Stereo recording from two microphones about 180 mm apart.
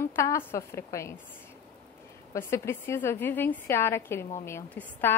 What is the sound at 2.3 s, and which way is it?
A woman's voice, 15° left (ahead or behind).